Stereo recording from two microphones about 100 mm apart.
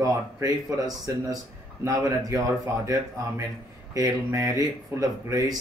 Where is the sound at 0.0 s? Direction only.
35° right (ahead or behind).